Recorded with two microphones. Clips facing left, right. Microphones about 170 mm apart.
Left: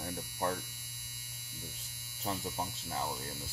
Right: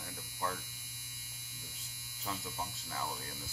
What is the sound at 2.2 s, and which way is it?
Speech, 40° left (ahead or behind).